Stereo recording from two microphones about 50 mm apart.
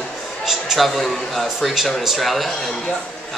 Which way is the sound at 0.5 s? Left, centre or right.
Centre.